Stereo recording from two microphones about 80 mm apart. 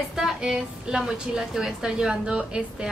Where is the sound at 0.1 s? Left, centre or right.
Centre.